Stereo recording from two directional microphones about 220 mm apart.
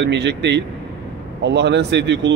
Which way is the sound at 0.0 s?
55° right (ahead or behind).